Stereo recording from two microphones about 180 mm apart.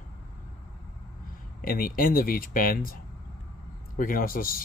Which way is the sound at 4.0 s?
50° left (ahead or behind).